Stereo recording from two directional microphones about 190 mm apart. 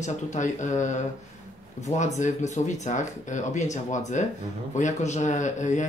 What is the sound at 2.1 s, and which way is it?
Speech, 40° left (ahead or behind).